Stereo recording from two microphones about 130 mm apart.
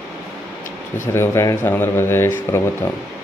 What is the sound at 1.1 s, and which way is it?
Speech, 20° left (ahead or behind).